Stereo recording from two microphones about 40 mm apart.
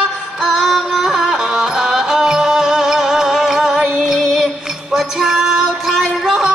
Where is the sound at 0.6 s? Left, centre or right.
Centre.